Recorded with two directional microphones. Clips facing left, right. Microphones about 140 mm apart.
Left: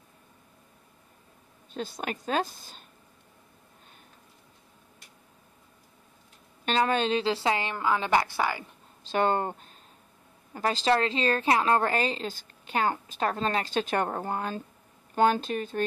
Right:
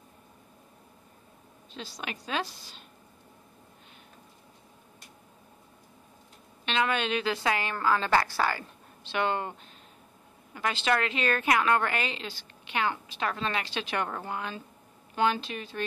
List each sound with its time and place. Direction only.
1.7 s a woman's voice: 50° left (ahead or behind)
6.6 s a woman's voice: 40° left (ahead or behind); by 8.6 s 20° left (ahead or behind)
9.1 s a woman's voice: 45° left (ahead or behind)